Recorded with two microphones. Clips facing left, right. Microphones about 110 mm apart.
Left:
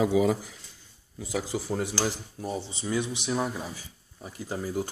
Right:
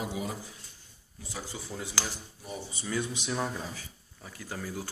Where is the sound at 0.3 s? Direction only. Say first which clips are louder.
Left 11 dB; 90° left.